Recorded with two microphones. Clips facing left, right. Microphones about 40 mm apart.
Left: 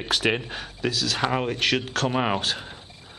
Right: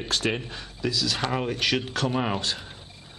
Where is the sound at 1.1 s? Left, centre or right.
Centre.